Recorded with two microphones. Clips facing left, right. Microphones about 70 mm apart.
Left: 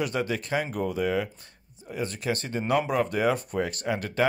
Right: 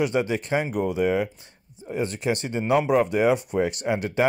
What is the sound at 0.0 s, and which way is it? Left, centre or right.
Speech, right.